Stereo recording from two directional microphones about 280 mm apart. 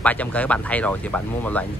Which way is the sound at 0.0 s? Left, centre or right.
Centre.